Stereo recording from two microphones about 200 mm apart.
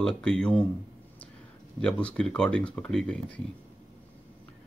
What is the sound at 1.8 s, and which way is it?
Speech, 5° left (ahead or behind).